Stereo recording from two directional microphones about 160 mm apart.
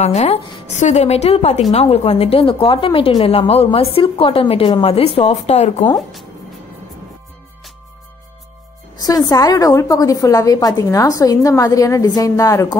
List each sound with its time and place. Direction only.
0.0 s speech: 45° left (ahead or behind)
5.9 s music: centre (ahead or behind)
9.0 s a woman's voice: 20° left (ahead or behind)